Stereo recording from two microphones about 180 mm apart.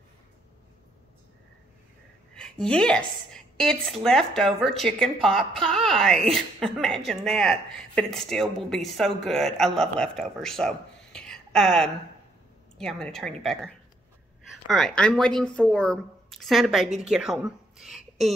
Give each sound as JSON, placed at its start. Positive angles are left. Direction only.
{"t": 2.6, "sound": "a woman's voice", "side_deg": 5}